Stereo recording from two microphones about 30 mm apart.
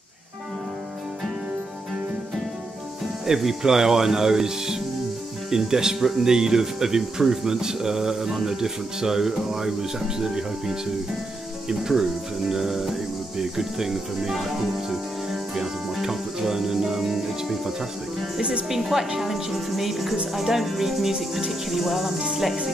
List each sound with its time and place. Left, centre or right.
3.3 s speech: centre
5.9 s speech: centre
6.2 s speech: centre
11.9 s speech: centre